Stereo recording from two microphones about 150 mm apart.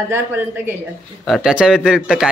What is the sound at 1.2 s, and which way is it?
Speech, centre (ahead or behind).